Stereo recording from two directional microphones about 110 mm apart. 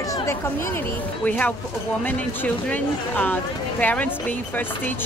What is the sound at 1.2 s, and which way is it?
Speech, 15° left (ahead or behind).